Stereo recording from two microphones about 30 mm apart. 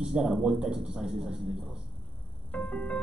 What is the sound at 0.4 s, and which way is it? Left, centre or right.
Speech, right.